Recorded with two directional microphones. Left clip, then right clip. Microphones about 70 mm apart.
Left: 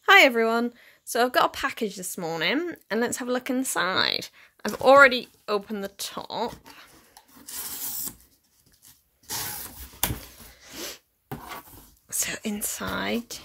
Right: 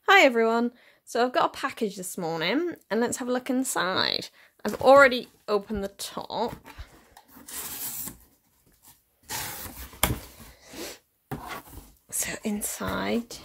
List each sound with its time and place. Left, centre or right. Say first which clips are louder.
0.0 s speech: left 2 dB; centre
1.2 s a woman's voice: left 2 dB; centre
1.5 s speech: left 1 dB; centre
6.6 s dog: even; centre
7.4 s rub: left 1 dB; right
10.2 s a sound: left 1 dB; centre
12.1 s speech: left 1 dB; centre